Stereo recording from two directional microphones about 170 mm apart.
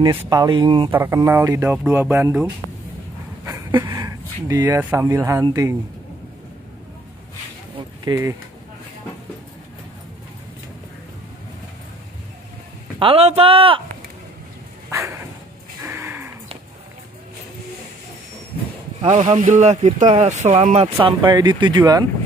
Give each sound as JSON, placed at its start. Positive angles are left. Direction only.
{"t": 0.3, "sound": "speech", "side_deg": -25}
{"t": 0.9, "sound": "speech", "side_deg": -15}
{"t": 3.4, "sound": "speech", "side_deg": -20}
{"t": 8.0, "sound": "speech", "side_deg": -15}
{"t": 13.0, "sound": "speech", "side_deg": -35}
{"t": 14.9, "sound": "a sound", "side_deg": -15}
{"t": 19.0, "sound": "speech", "side_deg": -45}